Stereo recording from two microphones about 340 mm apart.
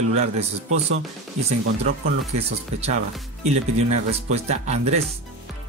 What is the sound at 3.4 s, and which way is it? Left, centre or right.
Speech, centre.